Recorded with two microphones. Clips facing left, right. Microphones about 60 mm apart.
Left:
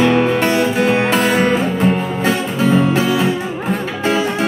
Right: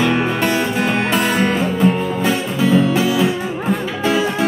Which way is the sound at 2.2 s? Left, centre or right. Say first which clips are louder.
Left 2 dB; left.